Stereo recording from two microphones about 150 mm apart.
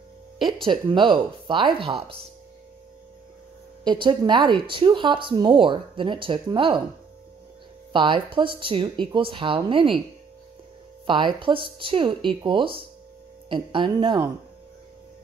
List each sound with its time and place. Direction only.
0.4 s speech: centre (ahead or behind)
0.7 s speech: 30° right (ahead or behind)
3.8 s speech: 30° right (ahead or behind)
7.9 s speech: 35° right (ahead or behind)
11.1 s speech: 35° right (ahead or behind)